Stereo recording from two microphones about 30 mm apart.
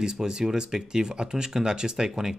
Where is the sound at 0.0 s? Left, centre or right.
Right.